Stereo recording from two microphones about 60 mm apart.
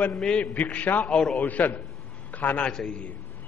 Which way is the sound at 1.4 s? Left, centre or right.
Left.